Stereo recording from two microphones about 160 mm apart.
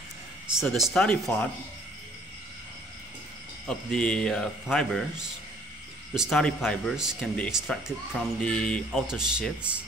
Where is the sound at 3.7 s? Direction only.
5° left (ahead or behind).